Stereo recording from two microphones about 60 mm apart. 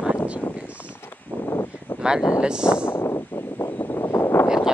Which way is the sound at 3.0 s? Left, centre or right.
Left.